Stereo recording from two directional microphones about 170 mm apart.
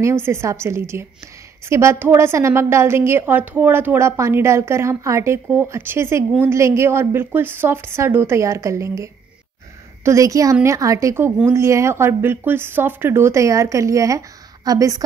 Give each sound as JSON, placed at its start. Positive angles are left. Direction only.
{"t": 0.0, "sound": "a woman's voice", "side_deg": -15}